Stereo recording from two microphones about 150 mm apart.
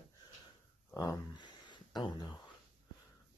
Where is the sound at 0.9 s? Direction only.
30° left (ahead or behind).